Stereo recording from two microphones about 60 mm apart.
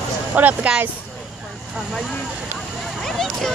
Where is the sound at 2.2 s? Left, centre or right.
Centre.